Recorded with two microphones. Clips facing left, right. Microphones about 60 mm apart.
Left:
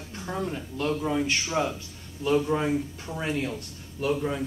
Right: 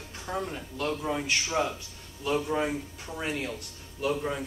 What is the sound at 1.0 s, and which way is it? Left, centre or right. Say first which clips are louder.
Speech: left 4 dB; centre.